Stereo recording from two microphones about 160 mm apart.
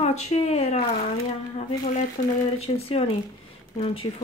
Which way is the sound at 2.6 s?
40° left (ahead or behind).